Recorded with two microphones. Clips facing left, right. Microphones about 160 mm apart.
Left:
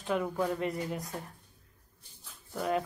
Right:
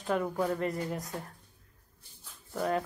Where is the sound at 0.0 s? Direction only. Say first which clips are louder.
Right 1 dB; centre (ahead or behind).